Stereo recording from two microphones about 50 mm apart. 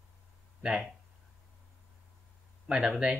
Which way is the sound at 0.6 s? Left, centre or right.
Centre.